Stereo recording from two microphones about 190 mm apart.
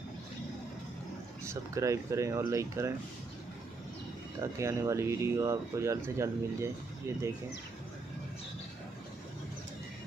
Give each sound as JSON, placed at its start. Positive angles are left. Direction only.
{"t": 1.4, "sound": "speech", "side_deg": -15}
{"t": 4.4, "sound": "speech", "side_deg": -15}